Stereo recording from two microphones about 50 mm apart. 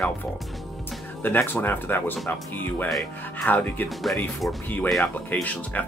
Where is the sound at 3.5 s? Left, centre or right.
Left.